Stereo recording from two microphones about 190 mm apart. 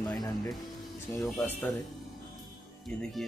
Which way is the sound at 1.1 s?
15° left (ahead or behind).